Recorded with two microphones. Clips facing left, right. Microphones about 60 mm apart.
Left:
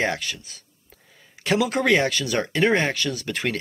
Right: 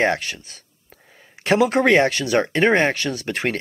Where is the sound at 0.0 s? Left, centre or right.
Right.